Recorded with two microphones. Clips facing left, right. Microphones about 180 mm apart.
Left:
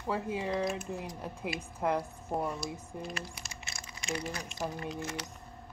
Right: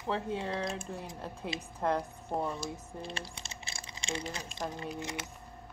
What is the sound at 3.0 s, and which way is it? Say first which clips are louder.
Typing: left 1 dB; 30° right (ahead or behind).